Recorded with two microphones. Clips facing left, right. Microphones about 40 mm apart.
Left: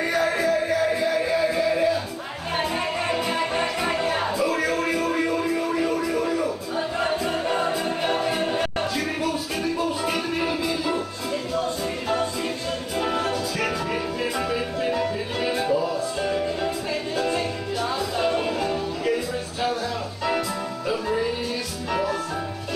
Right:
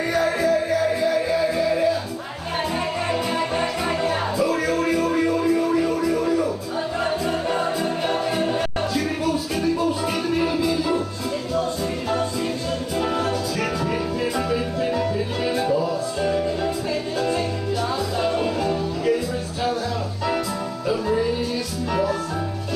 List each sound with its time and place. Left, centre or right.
0.0 s music: left
12.9 s music: left
20.9 s music: left